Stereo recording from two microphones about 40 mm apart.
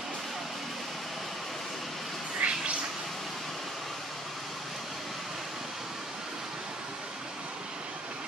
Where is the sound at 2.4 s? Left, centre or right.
Right.